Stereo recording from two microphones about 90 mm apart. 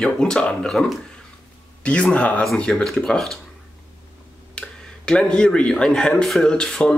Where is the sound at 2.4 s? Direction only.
5° left (ahead or behind).